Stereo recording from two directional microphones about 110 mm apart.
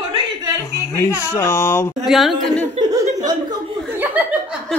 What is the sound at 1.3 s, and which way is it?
Speech, 25° left (ahead or behind).